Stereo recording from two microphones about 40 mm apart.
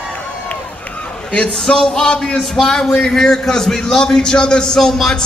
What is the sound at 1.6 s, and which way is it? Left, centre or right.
A man's voice, centre.